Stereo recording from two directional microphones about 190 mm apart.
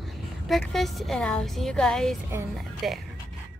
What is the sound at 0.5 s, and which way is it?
Speech, centre (ahead or behind).